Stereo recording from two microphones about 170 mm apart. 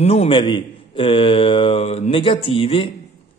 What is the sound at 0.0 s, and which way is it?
A man's voice, 35° left (ahead or behind).